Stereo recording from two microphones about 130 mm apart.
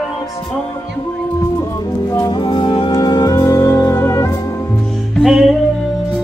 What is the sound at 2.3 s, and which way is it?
Music, 40° left (ahead or behind).